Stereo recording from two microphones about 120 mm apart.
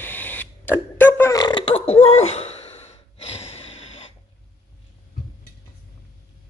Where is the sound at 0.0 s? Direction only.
15° left (ahead or behind).